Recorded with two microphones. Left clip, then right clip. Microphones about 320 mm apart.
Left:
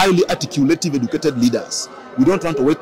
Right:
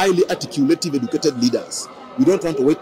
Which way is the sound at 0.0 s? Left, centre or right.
Left.